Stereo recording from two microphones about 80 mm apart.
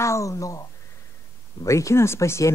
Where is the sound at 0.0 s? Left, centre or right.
Left.